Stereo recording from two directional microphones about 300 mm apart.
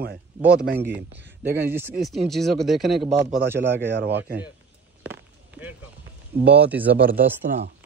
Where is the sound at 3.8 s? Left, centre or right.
Right.